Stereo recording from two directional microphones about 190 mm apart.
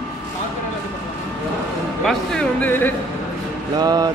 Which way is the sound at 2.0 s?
5° left (ahead or behind).